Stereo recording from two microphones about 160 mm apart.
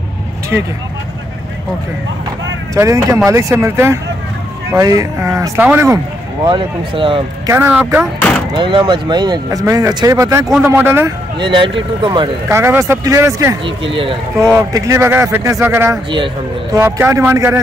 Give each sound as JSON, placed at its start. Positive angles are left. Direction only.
{"t": 2.7, "sound": "speech", "side_deg": -20}
{"t": 6.4, "sound": "speech", "side_deg": -30}
{"t": 7.4, "sound": "speech", "side_deg": -15}
{"t": 8.5, "sound": "speech", "side_deg": -30}
{"t": 11.3, "sound": "speech", "side_deg": -30}
{"t": 12.4, "sound": "speech", "side_deg": -15}
{"t": 13.7, "sound": "speech", "side_deg": -35}
{"t": 14.4, "sound": "speech", "side_deg": -20}